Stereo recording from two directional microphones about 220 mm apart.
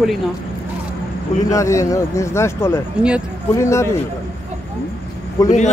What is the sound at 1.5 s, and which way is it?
Speech, 15° left (ahead or behind).